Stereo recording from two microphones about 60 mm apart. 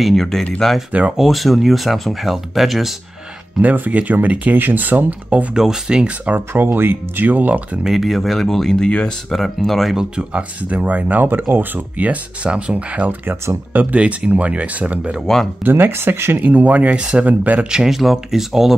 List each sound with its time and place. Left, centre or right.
0.0 s speech: centre
3.6 s speech: right
5.6 s speech: centre
6.5 s speech: right
7.8 s speech: centre
9.3 s speech: centre
9.9 s speech: centre
15.6 s speech: right
16.3 s speech: right
17.6 s speech: centre